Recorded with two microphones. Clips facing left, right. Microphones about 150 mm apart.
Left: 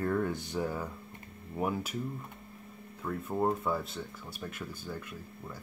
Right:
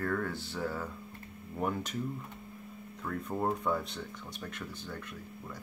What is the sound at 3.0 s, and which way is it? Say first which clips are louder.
Speech: left 2 dB; 5° left (ahead or behind).